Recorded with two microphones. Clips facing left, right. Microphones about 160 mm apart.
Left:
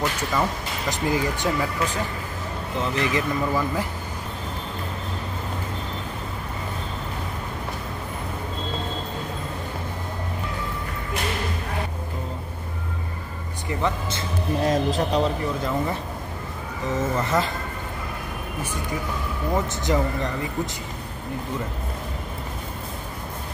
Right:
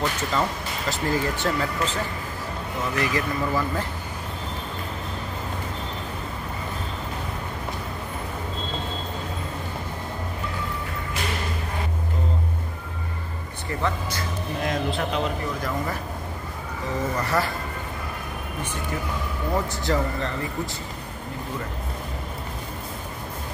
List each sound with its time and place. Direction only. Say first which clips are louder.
0.3 s speech: left 1 dB; 15° left (ahead or behind)
3.0 s speech: left 1 dB; 20° left (ahead or behind)
13.7 s speech: left 2 dB; 20° left (ahead or behind)
14.6 s speech: left 4 dB; 35° left (ahead or behind)
16.9 s speech: left 2 dB; 20° left (ahead or behind)
19.8 s speech: left 1 dB; 15° left (ahead or behind)